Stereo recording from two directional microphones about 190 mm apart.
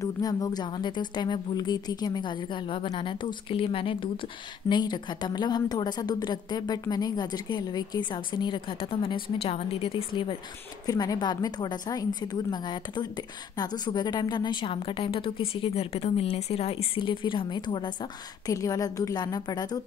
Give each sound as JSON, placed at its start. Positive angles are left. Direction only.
{"t": 0.0, "sound": "a woman's voice", "side_deg": 20}